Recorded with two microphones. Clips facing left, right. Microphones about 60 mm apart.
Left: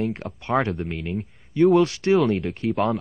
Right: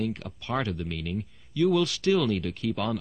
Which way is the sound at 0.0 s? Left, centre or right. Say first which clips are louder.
Left 4 dB; left.